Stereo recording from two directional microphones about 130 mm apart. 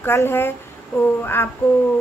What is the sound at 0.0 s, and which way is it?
A woman's voice, 15° left (ahead or behind).